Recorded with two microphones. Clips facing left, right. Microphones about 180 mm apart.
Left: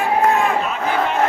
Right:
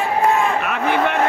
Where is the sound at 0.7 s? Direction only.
65° right (ahead or behind).